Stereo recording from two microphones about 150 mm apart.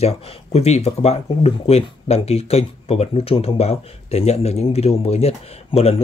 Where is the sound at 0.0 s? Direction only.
45° left (ahead or behind).